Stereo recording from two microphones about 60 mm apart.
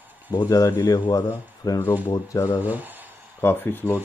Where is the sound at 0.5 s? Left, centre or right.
Left.